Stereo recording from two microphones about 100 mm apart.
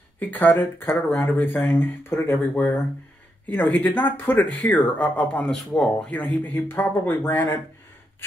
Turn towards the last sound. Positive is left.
turn(degrees=20)  # may be behind; listen again after turning